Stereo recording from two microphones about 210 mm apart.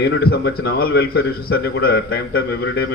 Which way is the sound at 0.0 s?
50° left (ahead or behind).